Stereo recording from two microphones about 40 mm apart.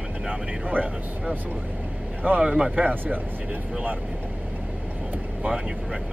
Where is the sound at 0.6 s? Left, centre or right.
Right.